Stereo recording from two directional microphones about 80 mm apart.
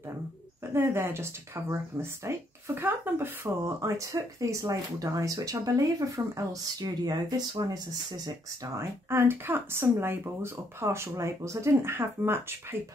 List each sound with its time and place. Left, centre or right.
0.7 s speech: right
3.8 s speech: right
8.6 s speech: right